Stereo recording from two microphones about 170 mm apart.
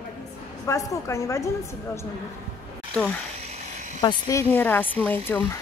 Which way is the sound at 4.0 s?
20° left (ahead or behind).